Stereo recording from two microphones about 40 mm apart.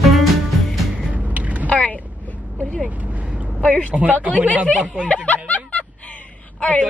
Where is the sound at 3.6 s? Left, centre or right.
Left.